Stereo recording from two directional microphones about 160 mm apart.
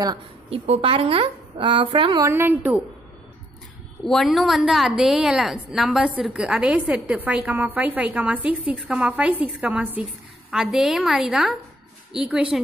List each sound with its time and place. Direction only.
0.0 s a woman's voice: 25° right (ahead or behind)
2.2 s a woman's voice: 15° right (ahead or behind)
4.0 s a woman's voice: centre (ahead or behind)